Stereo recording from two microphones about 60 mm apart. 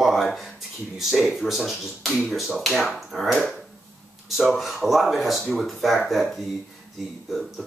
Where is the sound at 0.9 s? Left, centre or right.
Centre.